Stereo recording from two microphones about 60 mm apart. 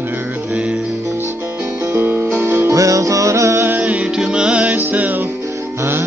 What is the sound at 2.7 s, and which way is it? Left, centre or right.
Music, right.